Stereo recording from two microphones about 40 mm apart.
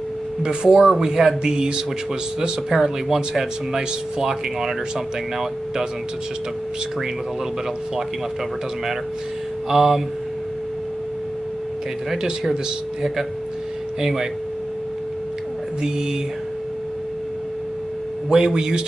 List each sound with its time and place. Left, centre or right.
0.4 s a man's voice: right
9.7 s speech: centre
12.1 s speech: centre
18.3 s a man's voice: centre